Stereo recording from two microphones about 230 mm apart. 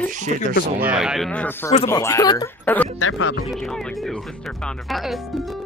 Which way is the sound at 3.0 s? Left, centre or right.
Left.